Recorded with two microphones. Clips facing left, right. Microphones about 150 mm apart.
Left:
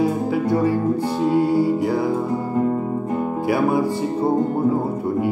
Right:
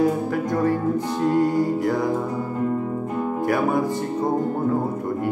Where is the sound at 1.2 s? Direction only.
10° left (ahead or behind).